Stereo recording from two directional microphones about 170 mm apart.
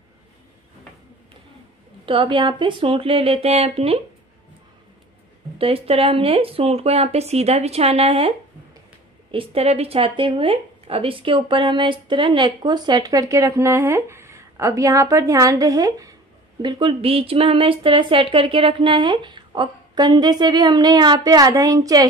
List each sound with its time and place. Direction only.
2.0 s speech: 30° right (ahead or behind)
5.6 s speech: 35° right (ahead or behind)
16.6 s speech: 30° right (ahead or behind)